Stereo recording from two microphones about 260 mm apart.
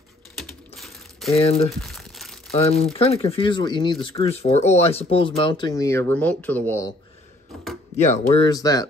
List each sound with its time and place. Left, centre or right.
0.4 s typing: centre
1.3 s speech: left
1.8 s crumpling: centre
2.5 s speech: left; by 6.9 s centre
8.3 s speech: centre